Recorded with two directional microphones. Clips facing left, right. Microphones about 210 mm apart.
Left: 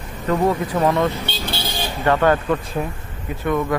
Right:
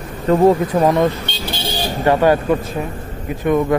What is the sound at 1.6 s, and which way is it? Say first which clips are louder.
Vehicle: right 4 dB; 35° right (ahead or behind).